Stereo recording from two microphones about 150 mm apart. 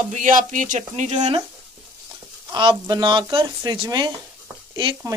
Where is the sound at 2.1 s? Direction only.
30° right (ahead or behind).